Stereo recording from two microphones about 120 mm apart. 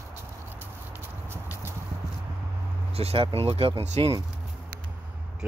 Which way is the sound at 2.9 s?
55° right (ahead or behind).